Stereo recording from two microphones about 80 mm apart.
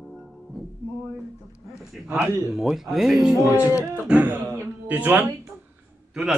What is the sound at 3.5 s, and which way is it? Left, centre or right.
Speech, left.